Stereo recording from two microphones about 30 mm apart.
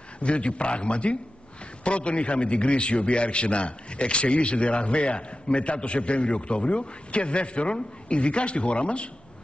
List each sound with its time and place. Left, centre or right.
0.2 s a man's voice: left